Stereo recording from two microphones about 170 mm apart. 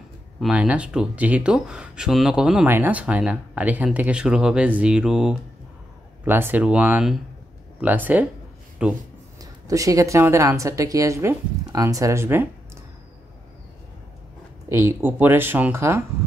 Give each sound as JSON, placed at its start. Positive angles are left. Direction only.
{"t": 0.4, "sound": "a woman's voice", "side_deg": -5}
{"t": 9.4, "sound": "a woman's voice", "side_deg": -20}
{"t": 14.7, "sound": "a woman's voice", "side_deg": -15}